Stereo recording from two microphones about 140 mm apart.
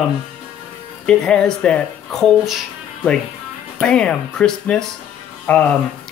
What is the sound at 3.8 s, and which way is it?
Speech, 5° left (ahead or behind).